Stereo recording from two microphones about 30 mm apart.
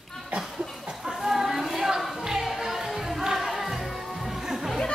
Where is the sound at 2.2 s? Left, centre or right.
Centre.